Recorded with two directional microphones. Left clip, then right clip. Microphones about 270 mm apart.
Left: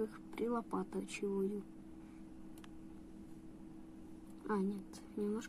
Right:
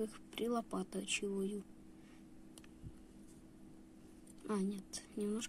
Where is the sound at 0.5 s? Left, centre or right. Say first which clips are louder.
Even; centre.